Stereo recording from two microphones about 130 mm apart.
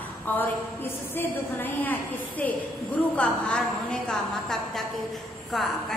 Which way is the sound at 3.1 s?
5° left (ahead or behind).